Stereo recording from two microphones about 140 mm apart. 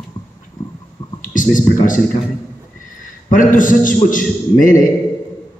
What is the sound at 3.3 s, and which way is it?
A man's voice, 70° left (ahead or behind).